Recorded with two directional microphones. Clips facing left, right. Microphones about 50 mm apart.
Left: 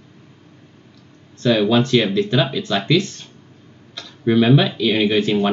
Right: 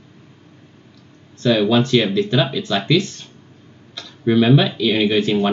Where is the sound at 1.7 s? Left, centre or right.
Left.